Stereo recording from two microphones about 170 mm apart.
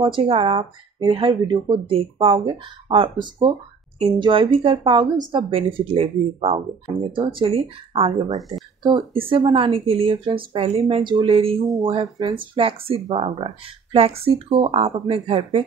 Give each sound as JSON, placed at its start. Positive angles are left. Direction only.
{"t": 0.0, "sound": "speech", "side_deg": -30}
{"t": 11.6, "sound": "speech", "side_deg": 0}
{"t": 11.9, "sound": "speech", "side_deg": -20}
{"t": 12.5, "sound": "speech", "side_deg": -35}